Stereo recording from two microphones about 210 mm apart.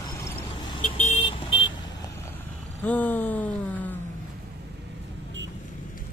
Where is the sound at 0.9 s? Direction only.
30° left (ahead or behind).